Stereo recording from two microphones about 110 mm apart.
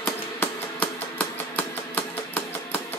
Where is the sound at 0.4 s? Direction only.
20° left (ahead or behind).